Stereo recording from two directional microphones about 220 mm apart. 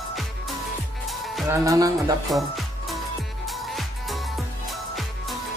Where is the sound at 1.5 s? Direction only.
15° right (ahead or behind).